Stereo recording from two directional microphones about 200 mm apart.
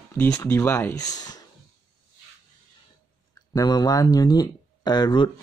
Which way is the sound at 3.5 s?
20° left (ahead or behind).